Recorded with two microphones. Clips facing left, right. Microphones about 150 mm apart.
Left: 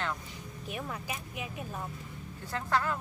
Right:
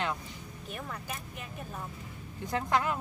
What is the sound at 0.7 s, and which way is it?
Speech, 5° left (ahead or behind).